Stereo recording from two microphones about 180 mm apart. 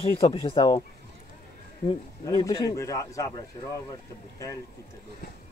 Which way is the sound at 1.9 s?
20° left (ahead or behind).